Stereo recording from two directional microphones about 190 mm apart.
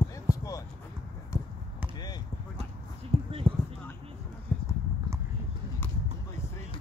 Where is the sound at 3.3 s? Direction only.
30° right (ahead or behind).